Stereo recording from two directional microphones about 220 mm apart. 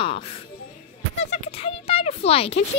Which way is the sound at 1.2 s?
30° left (ahead or behind).